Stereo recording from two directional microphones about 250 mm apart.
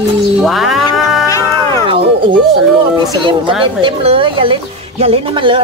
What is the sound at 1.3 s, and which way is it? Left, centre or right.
Music, centre.